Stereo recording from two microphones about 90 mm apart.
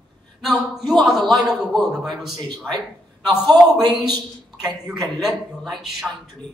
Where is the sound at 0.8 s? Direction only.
Centre (ahead or behind).